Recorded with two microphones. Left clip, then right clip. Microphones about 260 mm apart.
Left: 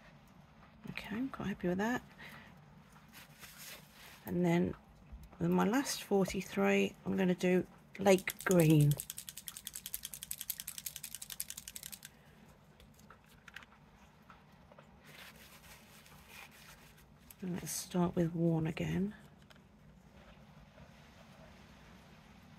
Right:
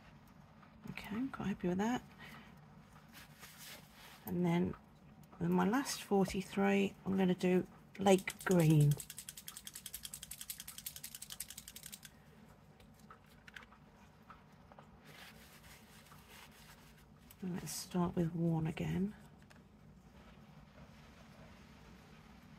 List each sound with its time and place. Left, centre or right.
0.9 s speech: centre
4.3 s speech: left
8.7 s speech: left
9.7 s a sound: left
17.6 s speech: left